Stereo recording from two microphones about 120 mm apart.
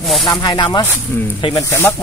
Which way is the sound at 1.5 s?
20° left (ahead or behind).